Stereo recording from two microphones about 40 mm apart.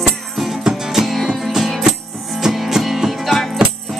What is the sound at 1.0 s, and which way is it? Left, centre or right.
Music, centre.